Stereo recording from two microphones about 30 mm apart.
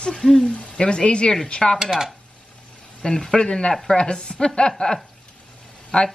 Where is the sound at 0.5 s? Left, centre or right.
Left.